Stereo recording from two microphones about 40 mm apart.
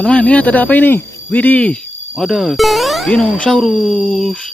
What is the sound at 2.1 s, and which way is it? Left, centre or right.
Speech, centre.